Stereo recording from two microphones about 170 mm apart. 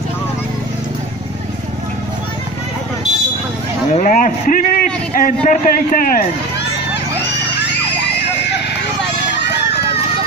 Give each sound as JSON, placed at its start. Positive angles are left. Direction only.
{"t": 3.9, "sound": "a sound", "side_deg": 50}
{"t": 5.4, "sound": "a man's voice", "side_deg": 50}
{"t": 7.5, "sound": "music", "side_deg": 90}